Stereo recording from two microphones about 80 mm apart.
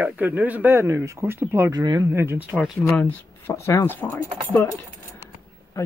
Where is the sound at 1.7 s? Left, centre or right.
Right.